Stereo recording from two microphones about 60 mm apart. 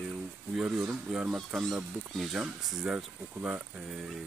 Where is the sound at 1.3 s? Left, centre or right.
Centre.